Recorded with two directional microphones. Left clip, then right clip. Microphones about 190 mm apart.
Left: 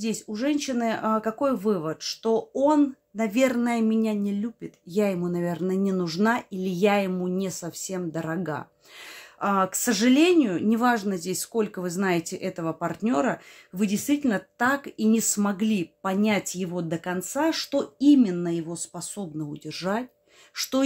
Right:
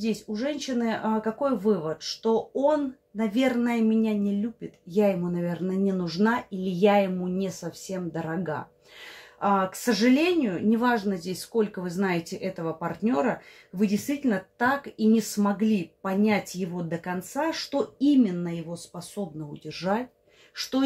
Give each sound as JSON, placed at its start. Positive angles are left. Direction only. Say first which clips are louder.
{"t": 0.0, "sound": "speech", "louder": "left 1 dB", "side_deg": 40}
{"t": 19.6, "sound": "speech", "louder": "right 2 dB", "side_deg": 30}